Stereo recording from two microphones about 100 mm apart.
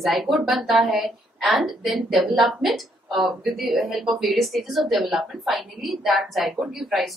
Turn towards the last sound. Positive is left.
turn(degrees=0)  # may be behind; listen again after turning